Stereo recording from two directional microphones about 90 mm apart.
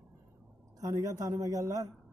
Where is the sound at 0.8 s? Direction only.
40° right (ahead or behind).